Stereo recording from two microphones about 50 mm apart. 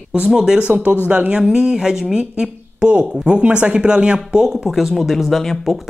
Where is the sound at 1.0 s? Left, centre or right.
Right.